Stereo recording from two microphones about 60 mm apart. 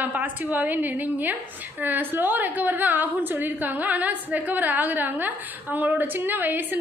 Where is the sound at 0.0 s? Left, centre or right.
Right.